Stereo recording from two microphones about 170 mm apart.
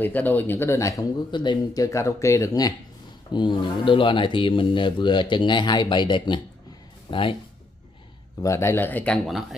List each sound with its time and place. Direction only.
0.0 s speech: 10° left (ahead or behind); by 7.3 s 30° left (ahead or behind)
8.4 s speech: 20° left (ahead or behind); by 9.6 s centre (ahead or behind)